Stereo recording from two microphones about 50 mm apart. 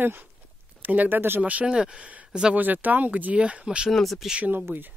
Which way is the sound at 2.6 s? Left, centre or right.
Right.